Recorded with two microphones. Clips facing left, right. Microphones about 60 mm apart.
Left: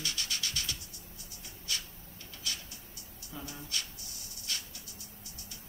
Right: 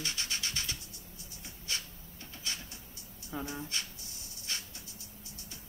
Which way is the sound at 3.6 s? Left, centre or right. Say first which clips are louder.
Right 1 dB; right.